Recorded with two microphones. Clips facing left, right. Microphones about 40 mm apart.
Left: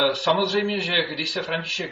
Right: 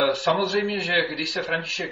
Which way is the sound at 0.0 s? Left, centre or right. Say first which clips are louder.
Left 1 dB; left.